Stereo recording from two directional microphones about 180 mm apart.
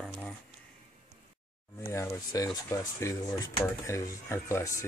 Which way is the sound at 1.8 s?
15° left (ahead or behind).